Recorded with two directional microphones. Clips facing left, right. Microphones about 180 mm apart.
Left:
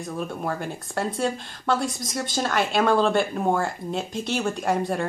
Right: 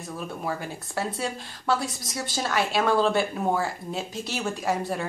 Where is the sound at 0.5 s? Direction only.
5° right (ahead or behind).